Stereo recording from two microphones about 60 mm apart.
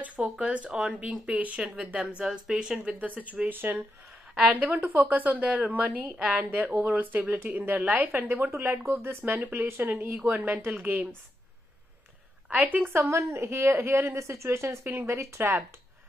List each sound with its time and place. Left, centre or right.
0.0 s a woman's voice: centre
3.0 s speech: right
4.4 s a woman's voice: centre
5.1 s a woman's voice: right
9.0 s a woman's voice: right
10.8 s speech: right
12.4 s speech: right
13.0 s a woman's voice: right